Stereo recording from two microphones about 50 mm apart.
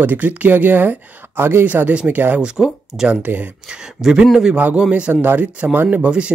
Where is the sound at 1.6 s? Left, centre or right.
Right.